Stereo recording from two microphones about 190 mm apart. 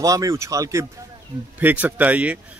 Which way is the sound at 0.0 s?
15° right (ahead or behind).